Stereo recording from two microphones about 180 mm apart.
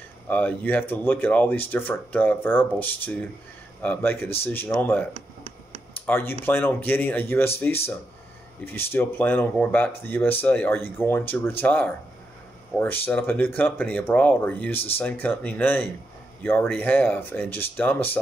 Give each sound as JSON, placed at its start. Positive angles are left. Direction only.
{"t": 0.3, "sound": "speech", "side_deg": 10}
{"t": 5.1, "sound": "a sound", "side_deg": -35}
{"t": 6.0, "sound": "speech", "side_deg": 10}